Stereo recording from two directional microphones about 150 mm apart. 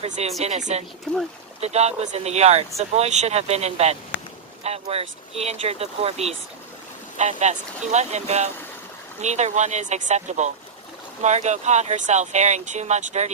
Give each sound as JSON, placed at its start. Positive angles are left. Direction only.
{"t": 0.0, "sound": "speech", "side_deg": -45}